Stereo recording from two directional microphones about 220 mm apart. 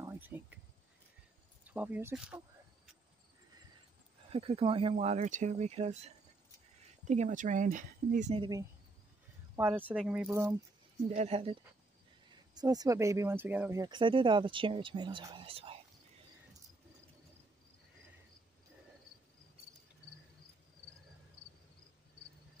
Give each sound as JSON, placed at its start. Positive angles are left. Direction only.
{"t": 0.0, "sound": "a sound", "side_deg": -10}
{"t": 1.6, "sound": "speech", "side_deg": -5}
{"t": 4.3, "sound": "speech", "side_deg": -25}
{"t": 9.6, "sound": "speech", "side_deg": -10}
{"t": 11.1, "sound": "speech", "side_deg": -30}
{"t": 12.5, "sound": "speech", "side_deg": -15}